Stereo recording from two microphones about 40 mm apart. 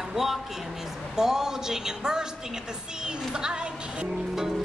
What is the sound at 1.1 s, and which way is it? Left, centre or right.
A woman's voice, centre.